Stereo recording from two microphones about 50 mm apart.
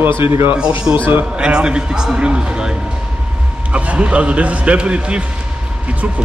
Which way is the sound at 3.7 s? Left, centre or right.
Right.